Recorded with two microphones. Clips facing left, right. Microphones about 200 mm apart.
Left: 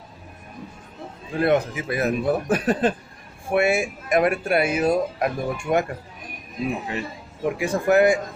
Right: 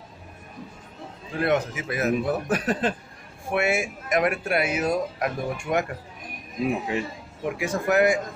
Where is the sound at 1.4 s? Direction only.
30° left (ahead or behind).